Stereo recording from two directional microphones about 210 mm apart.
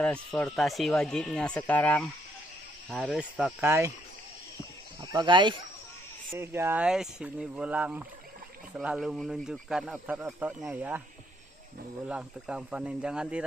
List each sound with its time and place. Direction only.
0.0 s speech: 5° left (ahead or behind); by 3.9 s 10° right (ahead or behind)
5.0 s speech: 20° right (ahead or behind)
6.3 s speech: 10° right (ahead or behind)
12.1 s speech: 5° right (ahead or behind)